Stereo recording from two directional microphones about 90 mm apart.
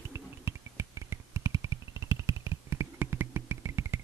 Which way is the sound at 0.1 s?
30° right (ahead or behind).